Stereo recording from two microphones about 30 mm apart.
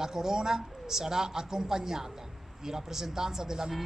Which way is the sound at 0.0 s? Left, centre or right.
Centre.